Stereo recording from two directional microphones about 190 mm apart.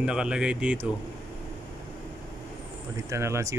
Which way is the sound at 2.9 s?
15° right (ahead or behind).